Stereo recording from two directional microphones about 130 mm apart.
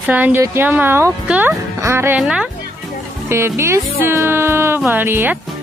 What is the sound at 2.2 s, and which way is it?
Speech, 5° right (ahead or behind).